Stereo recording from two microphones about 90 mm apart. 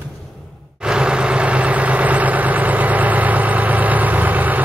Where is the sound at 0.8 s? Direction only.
10° right (ahead or behind).